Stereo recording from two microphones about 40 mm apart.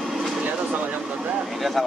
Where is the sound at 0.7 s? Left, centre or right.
Right.